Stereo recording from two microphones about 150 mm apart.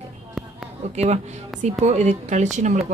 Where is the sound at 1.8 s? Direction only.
50° right (ahead or behind).